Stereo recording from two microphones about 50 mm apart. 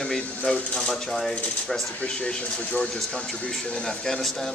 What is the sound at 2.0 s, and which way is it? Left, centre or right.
Speech, left.